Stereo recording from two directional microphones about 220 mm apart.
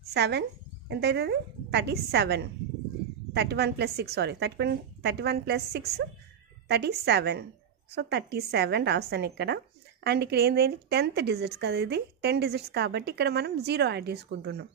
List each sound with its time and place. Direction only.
0.1 s a woman's voice: 50° right (ahead or behind)